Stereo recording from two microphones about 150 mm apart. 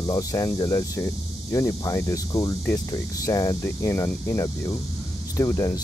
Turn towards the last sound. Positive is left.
turn(degrees=20)  # may be behind; listen again after turning